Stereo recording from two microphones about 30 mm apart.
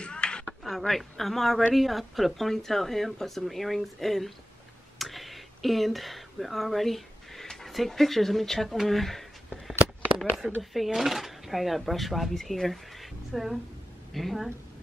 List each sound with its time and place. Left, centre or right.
0.0 s a sound: left
0.7 s speech: centre
4.9 s a sound: centre
7.6 s speech: centre
10.1 s speech: centre
10.6 s speech: centre